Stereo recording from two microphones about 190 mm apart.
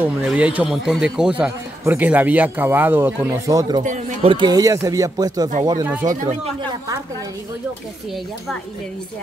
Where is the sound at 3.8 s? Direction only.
40° right (ahead or behind).